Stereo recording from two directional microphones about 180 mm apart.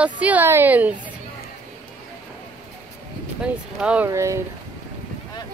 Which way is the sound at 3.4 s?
5° right (ahead or behind).